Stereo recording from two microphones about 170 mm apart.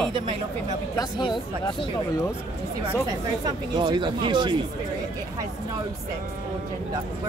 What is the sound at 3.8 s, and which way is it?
Speech, 25° right (ahead or behind).